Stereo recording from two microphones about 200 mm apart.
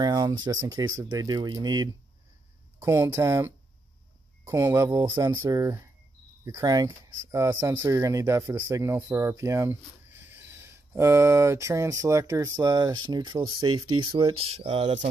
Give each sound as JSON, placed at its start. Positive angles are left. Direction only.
{"t": 0.0, "sound": "speech", "side_deg": -20}